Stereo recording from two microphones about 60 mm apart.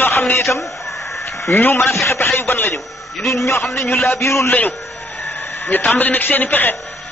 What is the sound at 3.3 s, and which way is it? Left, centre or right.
A man's voice, left.